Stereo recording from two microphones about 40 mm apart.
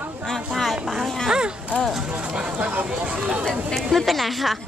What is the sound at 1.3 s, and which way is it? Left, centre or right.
Speech, right.